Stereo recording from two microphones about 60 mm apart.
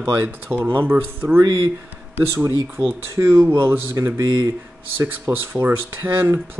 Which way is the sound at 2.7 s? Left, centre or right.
Right.